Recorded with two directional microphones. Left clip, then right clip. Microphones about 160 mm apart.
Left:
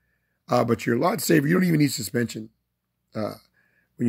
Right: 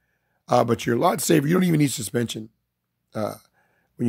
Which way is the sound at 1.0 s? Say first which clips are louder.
Right 2 dB; 20° right (ahead or behind).